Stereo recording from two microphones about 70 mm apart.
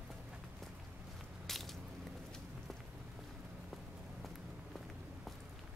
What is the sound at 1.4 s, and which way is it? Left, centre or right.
Mechanisms, centre.